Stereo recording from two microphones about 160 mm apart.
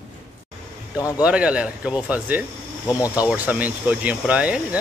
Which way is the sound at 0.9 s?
20° left (ahead or behind).